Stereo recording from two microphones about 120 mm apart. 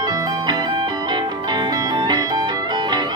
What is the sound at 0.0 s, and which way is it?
Music, 35° right (ahead or behind).